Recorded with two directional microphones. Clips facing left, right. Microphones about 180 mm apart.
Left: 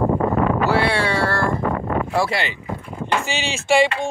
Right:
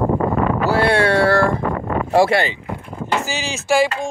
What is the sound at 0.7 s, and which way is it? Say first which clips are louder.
Boat: right 4 dB; 50° right (ahead or behind).